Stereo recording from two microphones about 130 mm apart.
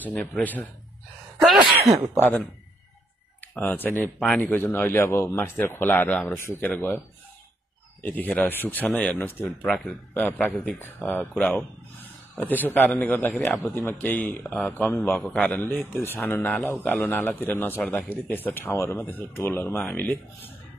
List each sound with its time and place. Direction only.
0.0 s speech: 10° left (ahead or behind)
1.4 s speech: centre (ahead or behind)
2.1 s speech: 15° left (ahead or behind)
8.0 s speech: 15° left (ahead or behind)